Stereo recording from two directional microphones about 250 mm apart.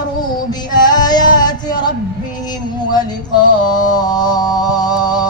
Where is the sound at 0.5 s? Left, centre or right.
Centre.